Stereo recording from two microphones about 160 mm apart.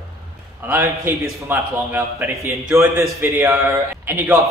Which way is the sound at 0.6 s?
15° right (ahead or behind).